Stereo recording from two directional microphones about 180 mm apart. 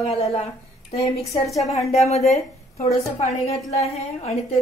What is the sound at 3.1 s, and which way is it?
A woman's voice, 35° left (ahead or behind).